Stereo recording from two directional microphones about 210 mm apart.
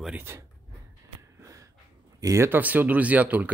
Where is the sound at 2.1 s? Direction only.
15° right (ahead or behind).